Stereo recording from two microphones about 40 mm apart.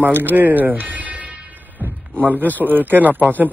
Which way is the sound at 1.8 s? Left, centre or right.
Right.